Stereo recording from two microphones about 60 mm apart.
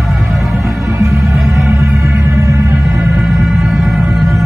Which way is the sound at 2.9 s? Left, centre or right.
Centre.